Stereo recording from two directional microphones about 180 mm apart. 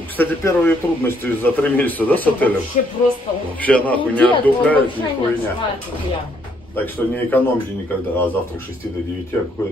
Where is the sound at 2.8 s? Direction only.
40° left (ahead or behind).